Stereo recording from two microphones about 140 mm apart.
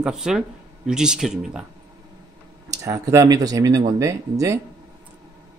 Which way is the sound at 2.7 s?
25° right (ahead or behind).